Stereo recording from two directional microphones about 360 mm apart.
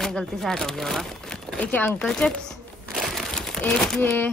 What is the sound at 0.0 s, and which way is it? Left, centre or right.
Speech, centre.